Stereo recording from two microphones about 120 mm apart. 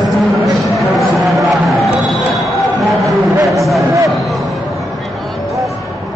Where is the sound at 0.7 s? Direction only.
Centre (ahead or behind).